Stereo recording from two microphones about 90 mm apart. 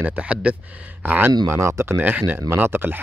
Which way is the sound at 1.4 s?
30° right (ahead or behind).